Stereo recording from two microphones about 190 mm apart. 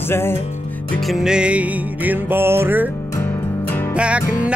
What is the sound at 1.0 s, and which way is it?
Music, centre (ahead or behind).